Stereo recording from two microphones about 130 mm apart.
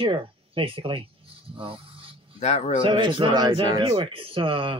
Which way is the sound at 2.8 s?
40° right (ahead or behind).